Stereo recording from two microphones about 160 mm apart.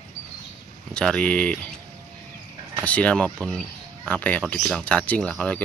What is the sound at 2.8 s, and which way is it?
Speech, 5° left (ahead or behind).